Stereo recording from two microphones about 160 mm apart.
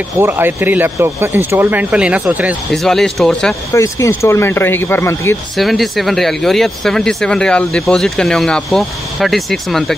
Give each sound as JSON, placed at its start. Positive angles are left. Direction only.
{"t": 0.2, "sound": "speech", "side_deg": -15}
{"t": 2.7, "sound": "speech", "side_deg": 0}
{"t": 3.7, "sound": "speech", "side_deg": 20}
{"t": 5.6, "sound": "speech", "side_deg": 0}